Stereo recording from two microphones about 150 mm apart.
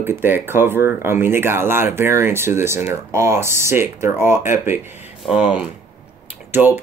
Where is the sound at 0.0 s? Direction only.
15° right (ahead or behind).